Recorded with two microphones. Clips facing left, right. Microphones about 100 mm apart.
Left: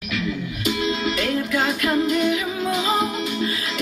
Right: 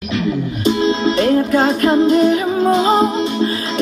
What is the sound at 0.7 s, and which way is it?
Music, 30° right (ahead or behind).